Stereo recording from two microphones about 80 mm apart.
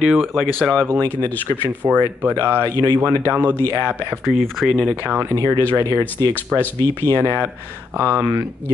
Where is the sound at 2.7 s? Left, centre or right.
Right.